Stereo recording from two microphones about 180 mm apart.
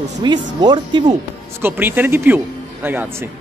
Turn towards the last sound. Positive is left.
turn(degrees=-10)  # may be behind; listen again after turning